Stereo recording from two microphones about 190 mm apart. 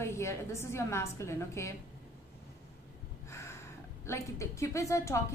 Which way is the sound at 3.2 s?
15° left (ahead or behind).